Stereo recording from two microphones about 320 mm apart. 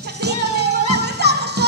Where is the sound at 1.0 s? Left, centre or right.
Right.